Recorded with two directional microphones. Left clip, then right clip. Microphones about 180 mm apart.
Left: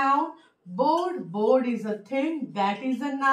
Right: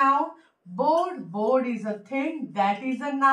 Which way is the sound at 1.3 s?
10° right (ahead or behind).